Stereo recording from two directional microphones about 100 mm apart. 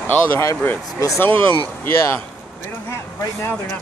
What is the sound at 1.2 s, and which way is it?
Speech, 20° left (ahead or behind).